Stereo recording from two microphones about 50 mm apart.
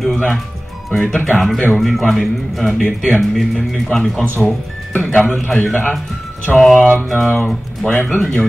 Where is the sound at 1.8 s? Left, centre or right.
Centre.